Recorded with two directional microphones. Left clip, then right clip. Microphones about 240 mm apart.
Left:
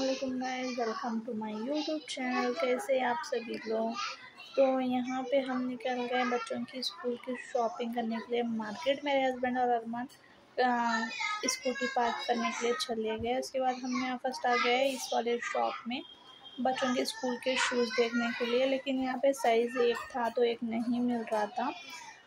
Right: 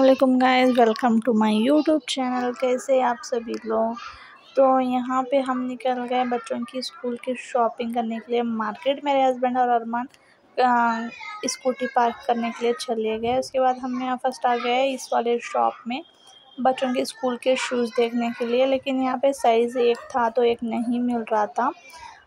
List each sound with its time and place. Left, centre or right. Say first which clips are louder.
0.4 s speech: right 17 dB; right
2.1 s a child's voice: right 7 dB; right